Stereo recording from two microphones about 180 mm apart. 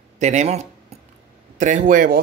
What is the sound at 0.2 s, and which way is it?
Speech, 40° right (ahead or behind).